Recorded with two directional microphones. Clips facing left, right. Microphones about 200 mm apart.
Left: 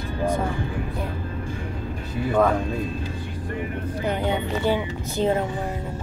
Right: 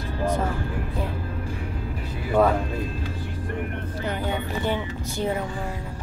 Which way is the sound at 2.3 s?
5° right (ahead or behind).